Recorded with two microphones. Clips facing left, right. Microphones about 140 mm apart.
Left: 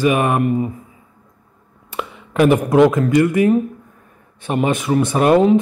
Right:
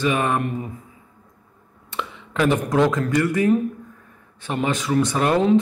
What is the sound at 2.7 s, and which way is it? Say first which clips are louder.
Speech: left 7 dB; 20° left (ahead or behind).